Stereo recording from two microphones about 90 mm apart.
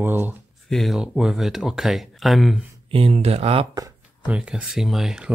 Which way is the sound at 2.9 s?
90° right.